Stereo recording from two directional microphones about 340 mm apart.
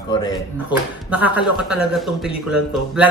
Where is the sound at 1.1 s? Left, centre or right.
Centre.